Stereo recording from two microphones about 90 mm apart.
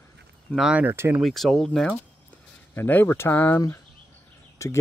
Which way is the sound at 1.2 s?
Centre (ahead or behind).